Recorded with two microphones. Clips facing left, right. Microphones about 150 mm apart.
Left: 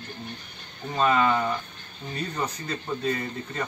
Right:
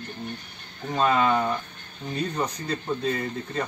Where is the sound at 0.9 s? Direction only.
10° right (ahead or behind).